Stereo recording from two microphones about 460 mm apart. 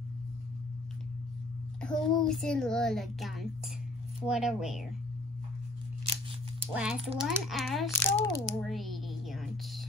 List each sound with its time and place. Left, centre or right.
1.8 s a child's voice: centre
6.7 s a child's voice: centre